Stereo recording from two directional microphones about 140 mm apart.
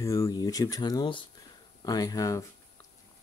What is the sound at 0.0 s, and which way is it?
Speech, 20° left (ahead or behind).